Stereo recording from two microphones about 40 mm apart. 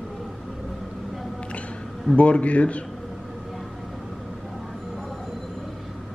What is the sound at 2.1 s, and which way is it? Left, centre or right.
Speech, left.